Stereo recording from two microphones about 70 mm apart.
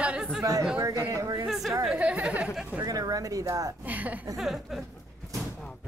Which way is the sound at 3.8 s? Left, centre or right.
Right.